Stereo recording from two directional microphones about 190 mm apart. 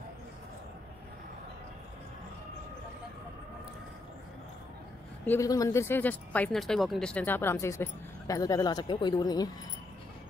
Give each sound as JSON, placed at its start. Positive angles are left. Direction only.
{"t": 5.2, "sound": "speech", "side_deg": 15}